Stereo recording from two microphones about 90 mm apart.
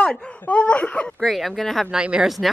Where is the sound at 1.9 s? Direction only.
10° right (ahead or behind).